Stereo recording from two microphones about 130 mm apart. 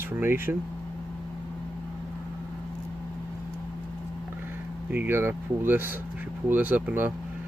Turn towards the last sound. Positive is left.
turn(degrees=-15)  # may be behind; listen again after turning